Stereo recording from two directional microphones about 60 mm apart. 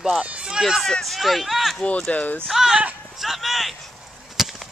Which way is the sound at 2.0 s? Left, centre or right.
Left.